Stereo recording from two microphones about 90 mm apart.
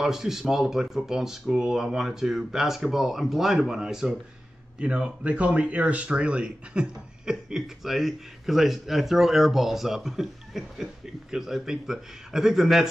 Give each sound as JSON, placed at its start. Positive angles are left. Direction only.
{"t": 0.0, "sound": "speech", "side_deg": -5}